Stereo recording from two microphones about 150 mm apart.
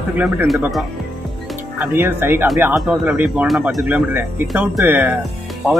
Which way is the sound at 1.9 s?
15° right (ahead or behind).